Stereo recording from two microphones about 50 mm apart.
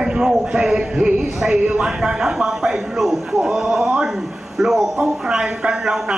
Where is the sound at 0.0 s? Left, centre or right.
Centre.